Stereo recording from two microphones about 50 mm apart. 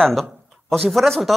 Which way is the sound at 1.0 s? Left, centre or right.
Centre.